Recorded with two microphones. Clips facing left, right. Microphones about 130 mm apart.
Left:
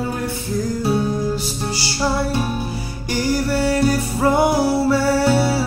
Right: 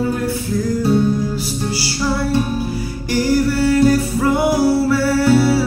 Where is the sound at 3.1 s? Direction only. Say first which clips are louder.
Right 4 dB; 25° left (ahead or behind).